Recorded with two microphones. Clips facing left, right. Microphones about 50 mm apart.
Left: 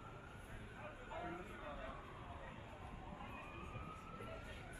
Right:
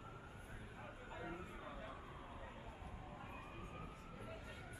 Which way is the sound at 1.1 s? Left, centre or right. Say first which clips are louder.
Left 2 dB; centre.